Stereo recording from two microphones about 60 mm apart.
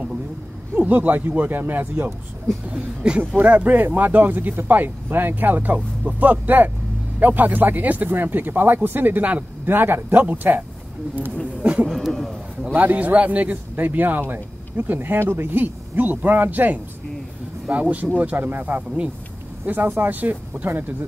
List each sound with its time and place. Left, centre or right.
0.7 s a man's voice: right
2.7 s a man's voice: right
11.6 s a sound: right
11.9 s a man's voice: centre
12.7 s a man's voice: right